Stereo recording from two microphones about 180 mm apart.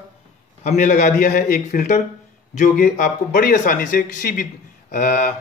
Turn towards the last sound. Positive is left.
turn(degrees=50)  # may be behind; listen again after turning